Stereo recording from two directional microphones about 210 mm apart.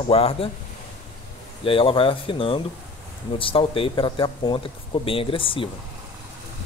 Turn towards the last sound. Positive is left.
turn(degrees=25)  # may be behind; listen again after turning